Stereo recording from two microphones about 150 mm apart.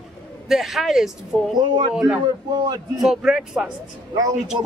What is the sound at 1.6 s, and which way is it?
Speech, 30° right (ahead or behind).